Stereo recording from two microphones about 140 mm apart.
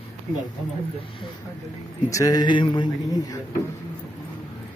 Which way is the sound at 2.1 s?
25° left (ahead or behind).